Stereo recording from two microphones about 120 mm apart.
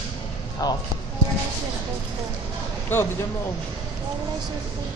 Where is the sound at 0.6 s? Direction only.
30° left (ahead or behind).